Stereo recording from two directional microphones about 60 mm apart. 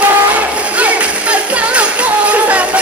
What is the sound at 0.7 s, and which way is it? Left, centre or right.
Music, right.